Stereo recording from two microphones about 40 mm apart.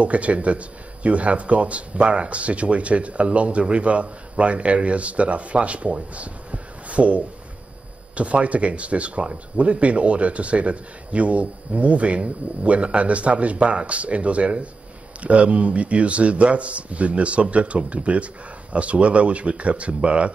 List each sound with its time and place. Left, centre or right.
0.0 s speech: right